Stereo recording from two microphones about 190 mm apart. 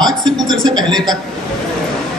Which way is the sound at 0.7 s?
20° right (ahead or behind).